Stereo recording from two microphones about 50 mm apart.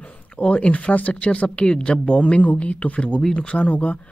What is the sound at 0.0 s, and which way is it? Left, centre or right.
Speech, left.